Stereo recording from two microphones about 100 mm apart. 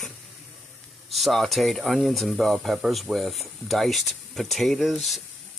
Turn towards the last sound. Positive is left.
turn(degrees=0)  # may be behind; listen again after turning